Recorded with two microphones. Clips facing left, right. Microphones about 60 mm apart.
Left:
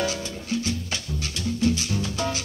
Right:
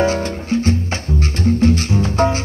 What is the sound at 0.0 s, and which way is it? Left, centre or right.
Music, right.